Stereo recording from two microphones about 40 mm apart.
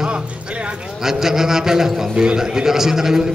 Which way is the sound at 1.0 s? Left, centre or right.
Centre.